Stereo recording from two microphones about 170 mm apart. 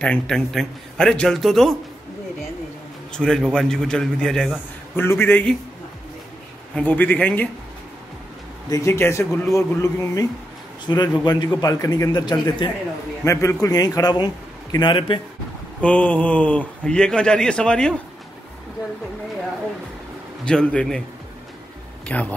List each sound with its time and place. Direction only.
0.0 s a man's voice: 5° left (ahead or behind)
3.1 s a man's voice: 5° left (ahead or behind)
4.9 s speech: 15° left (ahead or behind)
6.7 s speech: 10° left (ahead or behind)
8.6 s a man's voice: 20° left (ahead or behind)
15.8 s a man's voice: 10° left (ahead or behind)
20.4 s a man's voice: 5° left (ahead or behind)
22.0 s speech: 10° left (ahead or behind)